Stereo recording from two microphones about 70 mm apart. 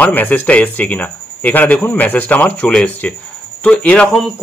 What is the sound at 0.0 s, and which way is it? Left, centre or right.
A man's voice, left.